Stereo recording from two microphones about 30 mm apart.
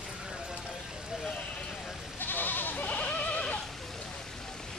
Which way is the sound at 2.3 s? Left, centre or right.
Left.